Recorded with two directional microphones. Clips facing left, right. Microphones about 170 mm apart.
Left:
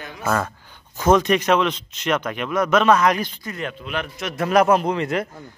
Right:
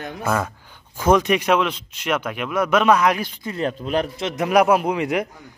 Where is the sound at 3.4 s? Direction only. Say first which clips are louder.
Right 5 dB; 30° right (ahead or behind).